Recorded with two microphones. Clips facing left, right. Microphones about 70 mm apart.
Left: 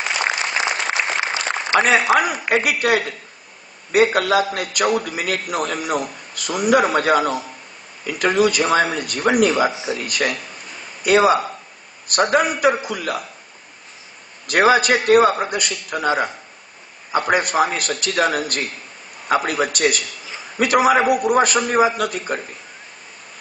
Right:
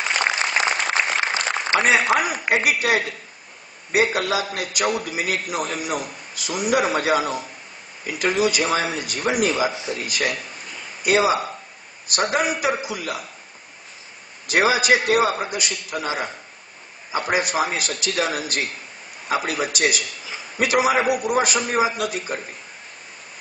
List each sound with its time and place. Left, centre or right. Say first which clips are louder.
0.9 s applause: even; right
2.1 s a man's voice: left 3 dB; left
14.5 s a man's voice: left 3 dB; left